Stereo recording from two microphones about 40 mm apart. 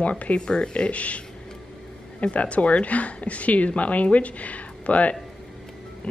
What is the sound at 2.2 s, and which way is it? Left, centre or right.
Speech, left.